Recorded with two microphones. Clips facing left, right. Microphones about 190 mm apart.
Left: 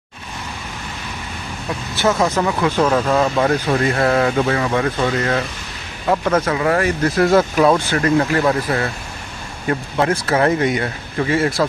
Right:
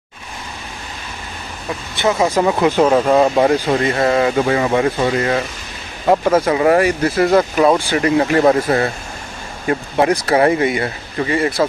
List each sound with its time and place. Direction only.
2.0 s speech: centre (ahead or behind)
2.8 s speech: 20° right (ahead or behind)
4.6 s speech: 20° right (ahead or behind)
6.5 s speech: 25° right (ahead or behind)
6.8 s speech: 5° right (ahead or behind)
7.9 s speech: 15° right (ahead or behind)
8.4 s speech: 35° right (ahead or behind)
9.7 s speech: 15° right (ahead or behind)
10.7 s speech: 5° right (ahead or behind)